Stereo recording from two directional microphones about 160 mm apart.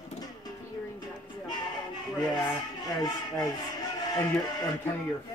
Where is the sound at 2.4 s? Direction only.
25° left (ahead or behind).